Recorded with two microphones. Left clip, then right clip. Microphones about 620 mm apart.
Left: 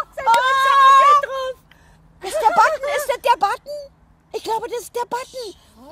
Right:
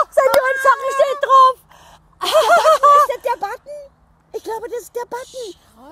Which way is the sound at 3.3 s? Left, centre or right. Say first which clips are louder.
Left 5 dB; left.